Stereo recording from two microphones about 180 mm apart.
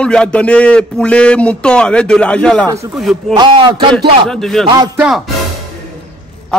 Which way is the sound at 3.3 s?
25° right (ahead or behind).